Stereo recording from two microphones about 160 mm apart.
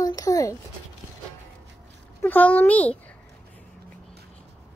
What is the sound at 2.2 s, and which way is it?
Speech, 10° left (ahead or behind).